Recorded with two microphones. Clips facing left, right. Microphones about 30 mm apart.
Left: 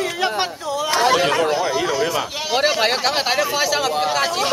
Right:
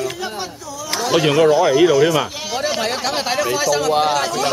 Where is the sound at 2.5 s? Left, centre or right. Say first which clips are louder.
Left 4 dB; left.